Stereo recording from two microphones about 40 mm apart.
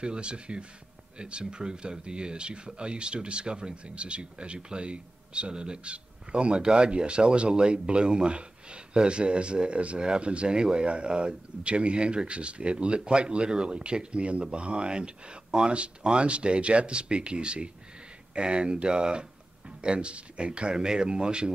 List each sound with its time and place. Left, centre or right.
0.0 s speech: right